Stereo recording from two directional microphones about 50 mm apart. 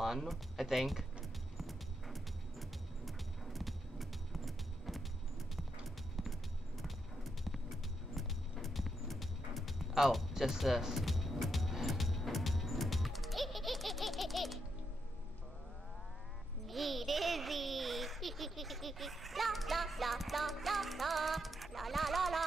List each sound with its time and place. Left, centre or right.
0.0 s speech: centre
1.6 s music: centre
8.1 s music: centre
16.6 s a sound: centre